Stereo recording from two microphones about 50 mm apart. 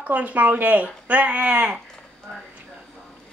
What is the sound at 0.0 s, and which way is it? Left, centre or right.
Speech, right.